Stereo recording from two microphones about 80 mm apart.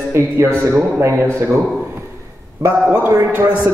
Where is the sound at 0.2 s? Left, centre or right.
Right.